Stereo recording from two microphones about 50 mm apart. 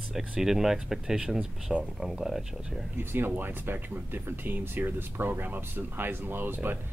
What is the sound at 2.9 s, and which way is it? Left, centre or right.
Speech, right.